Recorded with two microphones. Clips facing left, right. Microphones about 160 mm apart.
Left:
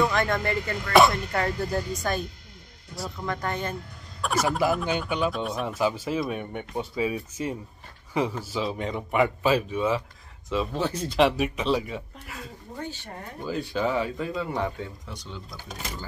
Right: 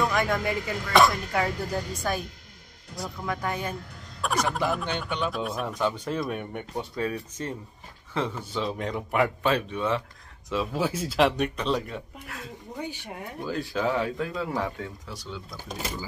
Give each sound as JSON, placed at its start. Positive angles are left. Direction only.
{"t": 0.1, "sound": "speech", "side_deg": -10}
{"t": 12.7, "sound": "speech", "side_deg": -15}
{"t": 13.4, "sound": "speech", "side_deg": 0}